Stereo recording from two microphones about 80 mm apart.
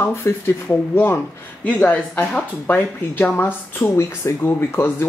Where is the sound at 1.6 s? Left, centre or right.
Centre.